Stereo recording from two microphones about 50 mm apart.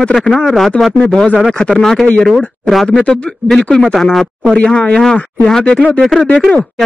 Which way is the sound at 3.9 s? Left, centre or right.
Centre.